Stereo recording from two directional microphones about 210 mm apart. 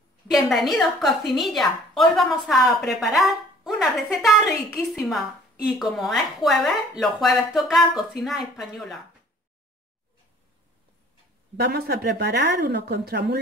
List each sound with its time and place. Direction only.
0.3 s a woman's voice: centre (ahead or behind)
11.5 s speech: 50° right (ahead or behind)